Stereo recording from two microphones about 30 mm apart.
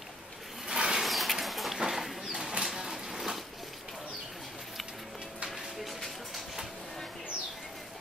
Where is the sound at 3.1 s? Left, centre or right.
Centre.